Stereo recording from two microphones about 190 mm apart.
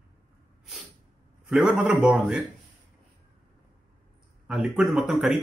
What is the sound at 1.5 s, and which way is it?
Speech, 5° right (ahead or behind).